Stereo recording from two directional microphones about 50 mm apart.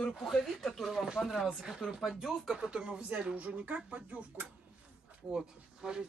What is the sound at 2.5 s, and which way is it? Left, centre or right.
Speech, centre.